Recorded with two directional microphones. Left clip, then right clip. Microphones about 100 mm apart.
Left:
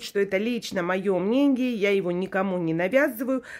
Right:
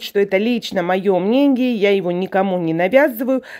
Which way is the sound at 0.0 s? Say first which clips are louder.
Right 8 dB; 30° right (ahead or behind).